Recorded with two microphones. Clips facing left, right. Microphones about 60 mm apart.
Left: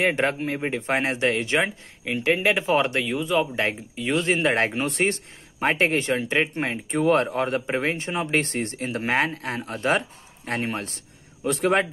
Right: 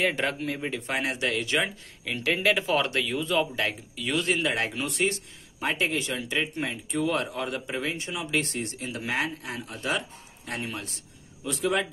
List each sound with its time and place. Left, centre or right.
0.0 s speech: left